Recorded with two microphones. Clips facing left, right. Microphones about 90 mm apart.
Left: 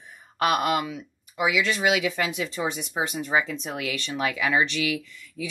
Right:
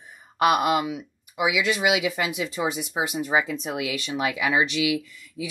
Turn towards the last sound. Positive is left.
turn(degrees=-5)  # may be behind; listen again after turning